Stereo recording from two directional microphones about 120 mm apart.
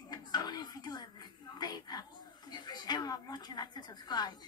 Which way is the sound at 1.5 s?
35° left (ahead or behind).